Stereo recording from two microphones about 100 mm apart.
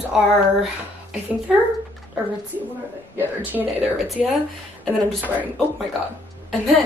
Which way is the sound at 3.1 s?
15° right (ahead or behind).